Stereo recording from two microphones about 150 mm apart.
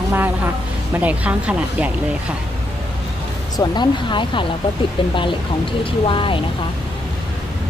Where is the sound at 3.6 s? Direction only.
30° left (ahead or behind).